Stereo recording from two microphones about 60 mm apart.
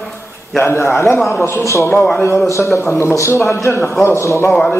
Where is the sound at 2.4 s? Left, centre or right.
Left.